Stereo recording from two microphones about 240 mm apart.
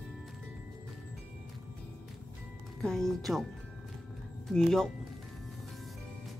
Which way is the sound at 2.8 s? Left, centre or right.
Centre.